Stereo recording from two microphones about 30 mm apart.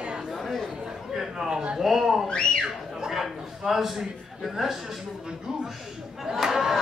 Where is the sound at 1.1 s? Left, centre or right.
Centre.